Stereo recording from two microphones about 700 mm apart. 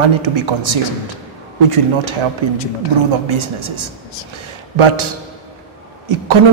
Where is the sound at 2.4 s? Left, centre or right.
Right.